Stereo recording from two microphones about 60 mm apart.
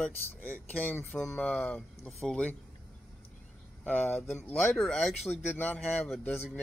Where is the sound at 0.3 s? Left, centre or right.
Left.